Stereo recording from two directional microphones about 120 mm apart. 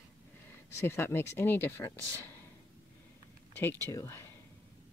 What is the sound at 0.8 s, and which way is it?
Speech, 20° left (ahead or behind).